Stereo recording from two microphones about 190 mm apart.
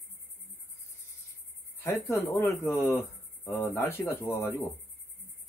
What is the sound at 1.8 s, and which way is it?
Speech, 15° left (ahead or behind).